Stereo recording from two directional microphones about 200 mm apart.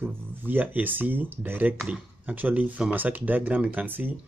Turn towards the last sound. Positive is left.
turn(degrees=-10)  # may be behind; listen again after turning